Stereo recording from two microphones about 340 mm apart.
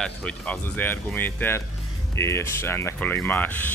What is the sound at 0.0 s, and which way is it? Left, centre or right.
Speech, centre.